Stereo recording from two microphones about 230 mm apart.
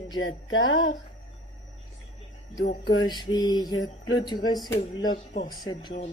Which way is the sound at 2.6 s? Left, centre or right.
Left.